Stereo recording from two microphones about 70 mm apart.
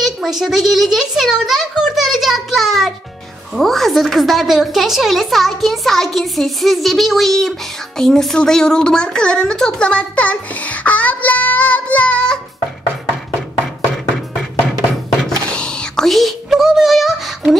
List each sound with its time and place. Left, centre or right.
0.0 s a child's voice: centre
15.4 s whispering: centre
16.1 s a sound: centre